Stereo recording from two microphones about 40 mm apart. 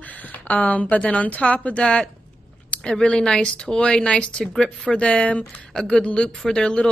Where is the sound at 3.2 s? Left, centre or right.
Left.